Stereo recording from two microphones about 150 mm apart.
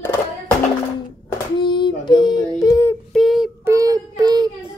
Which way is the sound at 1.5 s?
30° left (ahead or behind).